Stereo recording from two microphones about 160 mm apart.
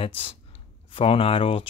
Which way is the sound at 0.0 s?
35° left (ahead or behind).